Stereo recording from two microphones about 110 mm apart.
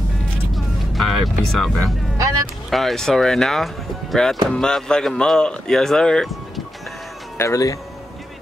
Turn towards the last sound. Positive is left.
turn(degrees=30)  # may be behind; listen again after turning